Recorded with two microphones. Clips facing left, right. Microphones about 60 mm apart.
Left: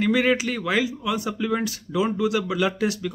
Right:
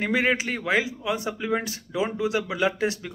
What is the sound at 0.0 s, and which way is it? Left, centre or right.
Speech, right.